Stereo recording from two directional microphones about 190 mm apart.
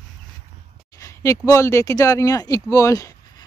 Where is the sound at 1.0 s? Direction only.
15° left (ahead or behind).